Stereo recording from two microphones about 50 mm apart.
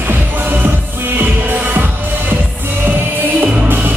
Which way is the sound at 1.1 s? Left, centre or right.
Right.